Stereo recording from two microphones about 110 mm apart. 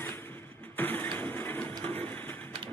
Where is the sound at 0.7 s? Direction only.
20° left (ahead or behind).